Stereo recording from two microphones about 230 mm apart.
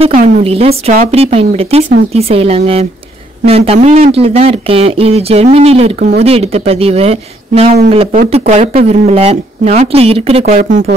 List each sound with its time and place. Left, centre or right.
0.0 s speech: right
5.9 s speech: right
6.2 s speech: right